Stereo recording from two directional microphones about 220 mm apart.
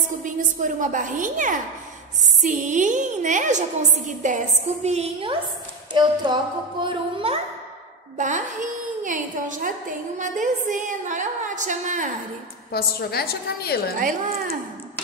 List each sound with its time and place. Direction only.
0.2 s a woman's voice: 35° right (ahead or behind)
8.2 s a woman's voice: 35° right (ahead or behind)
12.7 s a woman's voice: 45° left (ahead or behind)